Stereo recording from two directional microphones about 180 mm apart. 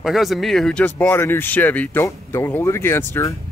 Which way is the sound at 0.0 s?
Centre (ahead or behind).